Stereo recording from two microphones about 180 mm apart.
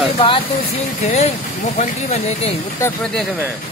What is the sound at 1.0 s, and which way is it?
Speech, 35° left (ahead or behind).